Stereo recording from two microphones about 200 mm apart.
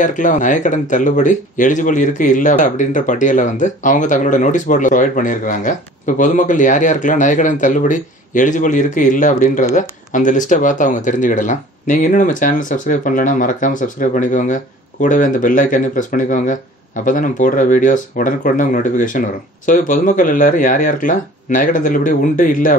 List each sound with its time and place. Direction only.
0.0 s speech: 40° left (ahead or behind)